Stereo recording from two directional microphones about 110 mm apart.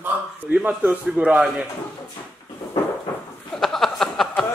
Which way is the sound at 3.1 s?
15° left (ahead or behind).